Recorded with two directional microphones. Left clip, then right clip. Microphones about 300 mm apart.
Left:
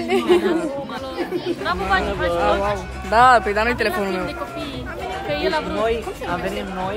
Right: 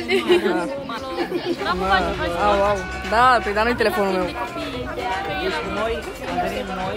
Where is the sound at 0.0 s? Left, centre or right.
Left.